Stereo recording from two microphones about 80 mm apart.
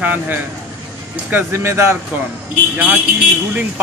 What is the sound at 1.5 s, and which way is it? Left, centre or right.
Speech, right.